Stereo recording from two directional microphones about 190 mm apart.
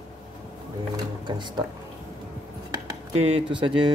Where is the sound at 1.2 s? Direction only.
25° right (ahead or behind).